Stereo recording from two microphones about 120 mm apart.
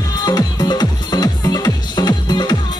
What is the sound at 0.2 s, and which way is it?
Music, 35° left (ahead or behind).